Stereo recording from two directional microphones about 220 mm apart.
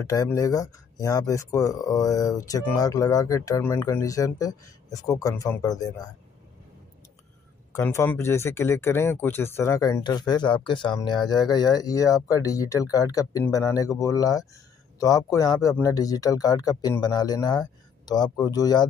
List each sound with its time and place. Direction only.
0.0 s speech: 15° left (ahead or behind)
7.7 s speech: 10° left (ahead or behind)